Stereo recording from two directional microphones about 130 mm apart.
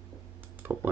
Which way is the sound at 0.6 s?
15° right (ahead or behind).